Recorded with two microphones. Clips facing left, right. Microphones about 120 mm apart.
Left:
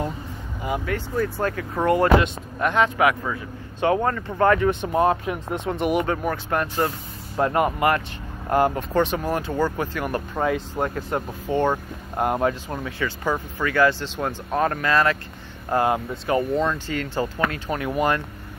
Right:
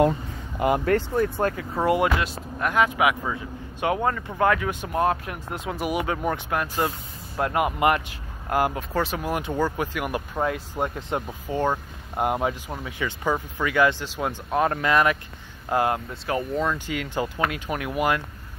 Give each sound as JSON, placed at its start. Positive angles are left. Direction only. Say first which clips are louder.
{"t": 0.6, "sound": "speech", "louder": "right 6 dB", "side_deg": -75}
{"t": 1.1, "sound": "speech", "louder": "right 1 dB", "side_deg": -20}
{"t": 1.8, "sound": "a man's voice", "louder": "left 4 dB", "side_deg": -5}
{"t": 10.7, "sound": "speech", "louder": "left 2 dB", "side_deg": -20}
{"t": 11.5, "sound": "speech", "louder": "left 3 dB", "side_deg": -10}
{"t": 15.9, "sound": "a man's voice", "louder": "left 4 dB", "side_deg": 0}
{"t": 16.7, "sound": "speech", "louder": "left 2 dB", "side_deg": -10}